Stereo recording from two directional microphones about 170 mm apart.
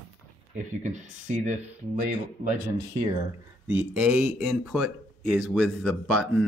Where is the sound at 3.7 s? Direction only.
10° right (ahead or behind).